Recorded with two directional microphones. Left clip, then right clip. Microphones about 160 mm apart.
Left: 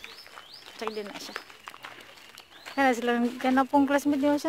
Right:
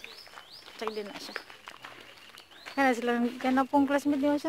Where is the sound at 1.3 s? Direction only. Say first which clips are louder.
Right 1 dB; 50° left (ahead or behind).